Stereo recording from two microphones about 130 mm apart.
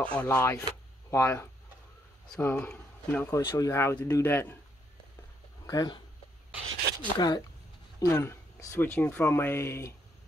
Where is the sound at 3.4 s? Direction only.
35° left (ahead or behind).